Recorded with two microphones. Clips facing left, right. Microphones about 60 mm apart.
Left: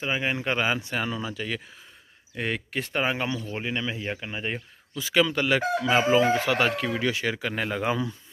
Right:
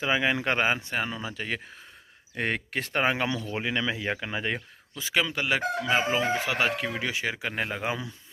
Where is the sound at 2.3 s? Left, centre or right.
Right.